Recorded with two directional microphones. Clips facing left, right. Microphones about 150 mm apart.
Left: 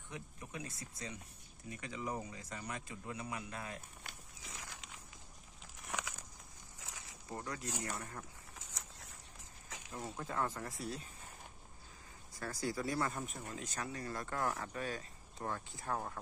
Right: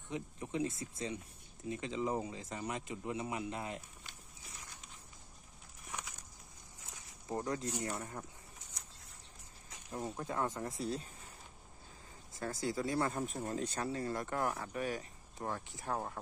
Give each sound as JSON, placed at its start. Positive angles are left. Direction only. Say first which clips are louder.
{"t": 0.1, "sound": "speech", "louder": "right 8 dB", "side_deg": -25}
{"t": 4.0, "sound": "walk", "louder": "left 2 dB", "side_deg": 90}
{"t": 5.8, "sound": "a sound", "louder": "left 3 dB", "side_deg": 90}
{"t": 6.8, "sound": "snake", "louder": "left 3 dB", "side_deg": 90}
{"t": 7.2, "sound": "speech", "louder": "right 6 dB", "side_deg": -20}
{"t": 8.5, "sound": "a sound", "louder": "left 3 dB", "side_deg": 90}
{"t": 9.8, "sound": "speech", "louder": "right 5 dB", "side_deg": -30}
{"t": 10.1, "sound": "speech", "louder": "even", "side_deg": -15}
{"t": 12.4, "sound": "speech", "louder": "right 2 dB", "side_deg": -25}